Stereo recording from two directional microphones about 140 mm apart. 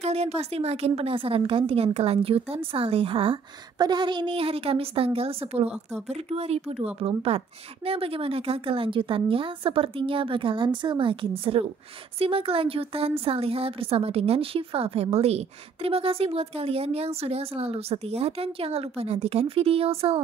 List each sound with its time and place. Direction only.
0.0 s a woman's voice: 50° right (ahead or behind)
3.7 s a woman's voice: 30° right (ahead or behind)